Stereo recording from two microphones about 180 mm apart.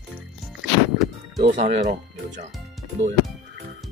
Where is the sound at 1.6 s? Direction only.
40° right (ahead or behind).